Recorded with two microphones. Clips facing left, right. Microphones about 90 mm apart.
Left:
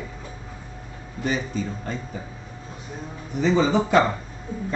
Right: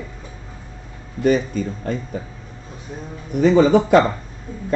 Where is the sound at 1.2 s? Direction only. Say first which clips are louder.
Right 8 dB; 50° right (ahead or behind).